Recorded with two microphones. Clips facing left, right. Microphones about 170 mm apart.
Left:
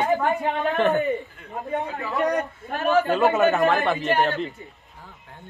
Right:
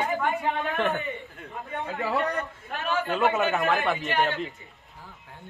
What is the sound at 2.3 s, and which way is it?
A man's voice, 40° left (ahead or behind).